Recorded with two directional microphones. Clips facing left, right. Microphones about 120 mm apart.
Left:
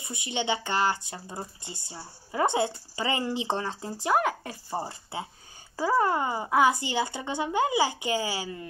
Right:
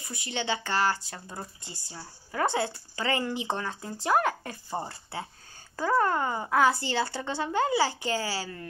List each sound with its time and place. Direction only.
0.0 s speech: 20° left (ahead or behind)
4.0 s speech: 10° left (ahead or behind)
4.8 s speech: 20° left (ahead or behind)